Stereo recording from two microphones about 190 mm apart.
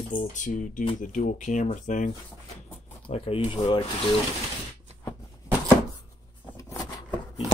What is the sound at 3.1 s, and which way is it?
Speech, 30° left (ahead or behind).